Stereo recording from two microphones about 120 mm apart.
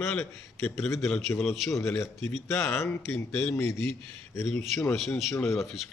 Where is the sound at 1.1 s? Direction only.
Centre (ahead or behind).